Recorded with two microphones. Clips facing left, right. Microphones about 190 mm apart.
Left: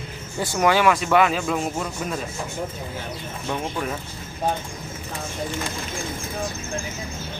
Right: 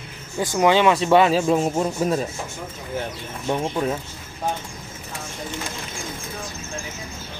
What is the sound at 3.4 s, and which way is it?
Speech, 20° right (ahead or behind).